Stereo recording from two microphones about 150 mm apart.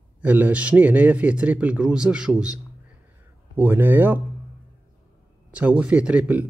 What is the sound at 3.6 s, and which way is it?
Speech, 15° right (ahead or behind).